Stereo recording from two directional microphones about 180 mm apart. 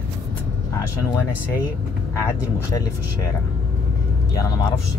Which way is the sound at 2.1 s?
15° left (ahead or behind).